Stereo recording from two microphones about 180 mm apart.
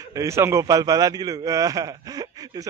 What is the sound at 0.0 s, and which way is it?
A man's voice, 15° right (ahead or behind).